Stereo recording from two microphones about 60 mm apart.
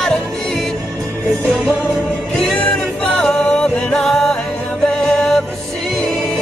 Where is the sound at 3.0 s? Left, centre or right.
Centre.